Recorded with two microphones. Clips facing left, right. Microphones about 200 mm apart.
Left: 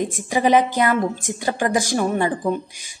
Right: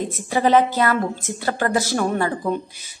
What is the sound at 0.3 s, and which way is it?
A woman's voice, 15° left (ahead or behind).